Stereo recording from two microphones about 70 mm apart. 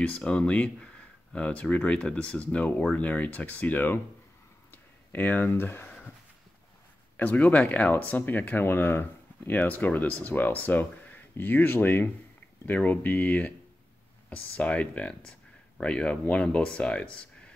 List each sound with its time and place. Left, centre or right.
0.0 s speech: centre
4.6 s a sound: left
7.2 s speech: left